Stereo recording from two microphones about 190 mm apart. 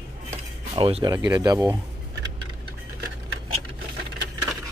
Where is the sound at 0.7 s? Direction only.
30° right (ahead or behind).